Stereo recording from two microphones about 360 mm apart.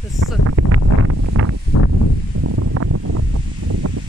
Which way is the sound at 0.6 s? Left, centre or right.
Right.